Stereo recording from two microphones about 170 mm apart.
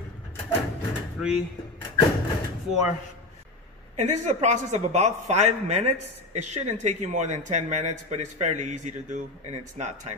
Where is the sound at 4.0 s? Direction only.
40° right (ahead or behind).